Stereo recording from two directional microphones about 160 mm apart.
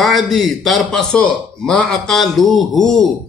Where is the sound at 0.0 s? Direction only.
Centre (ahead or behind).